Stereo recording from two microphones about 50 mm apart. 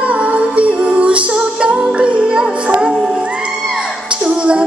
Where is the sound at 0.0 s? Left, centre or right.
Right.